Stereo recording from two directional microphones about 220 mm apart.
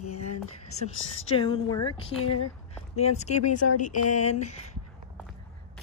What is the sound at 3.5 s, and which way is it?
Speech, 90° left.